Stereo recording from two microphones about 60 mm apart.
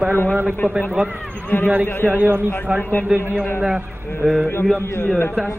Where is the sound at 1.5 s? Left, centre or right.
Left.